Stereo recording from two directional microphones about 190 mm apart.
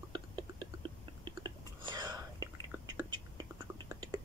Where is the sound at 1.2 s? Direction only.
25° right (ahead or behind).